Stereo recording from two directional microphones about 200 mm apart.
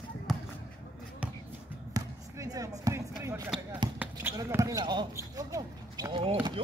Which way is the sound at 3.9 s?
10° right (ahead or behind).